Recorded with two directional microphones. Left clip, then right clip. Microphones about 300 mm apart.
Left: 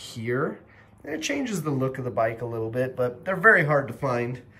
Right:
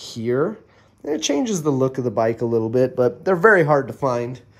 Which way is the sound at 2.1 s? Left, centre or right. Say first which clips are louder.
Right 3 dB; right.